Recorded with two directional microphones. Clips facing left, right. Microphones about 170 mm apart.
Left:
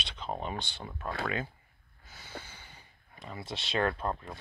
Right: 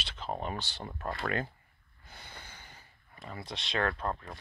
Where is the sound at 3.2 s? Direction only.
Centre (ahead or behind).